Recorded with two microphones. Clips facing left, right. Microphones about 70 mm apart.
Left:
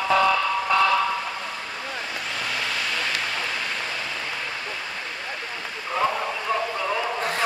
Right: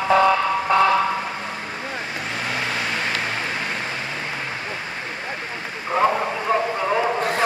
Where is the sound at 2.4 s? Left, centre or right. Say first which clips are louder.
Right 3 dB; right.